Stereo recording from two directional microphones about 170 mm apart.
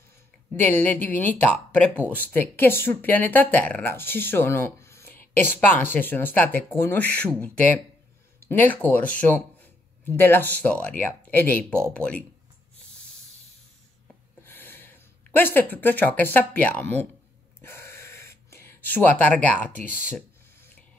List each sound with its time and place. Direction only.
0.6 s speech: 10° left (ahead or behind)
14.4 s speech: 10° left (ahead or behind)
17.6 s gasp: 15° left (ahead or behind)